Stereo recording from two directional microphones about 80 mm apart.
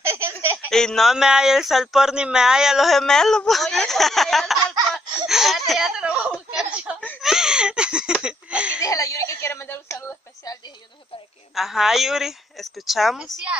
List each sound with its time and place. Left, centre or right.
0.0 s a sound: right
0.7 s speech: centre
1.1 s speech: centre
4.9 s snicker: centre
7.2 s laughter: centre
8.8 s a sound: left
11.5 s speech: centre